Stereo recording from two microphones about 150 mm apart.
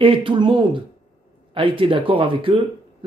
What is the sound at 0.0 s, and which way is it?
Speech, 35° right (ahead or behind).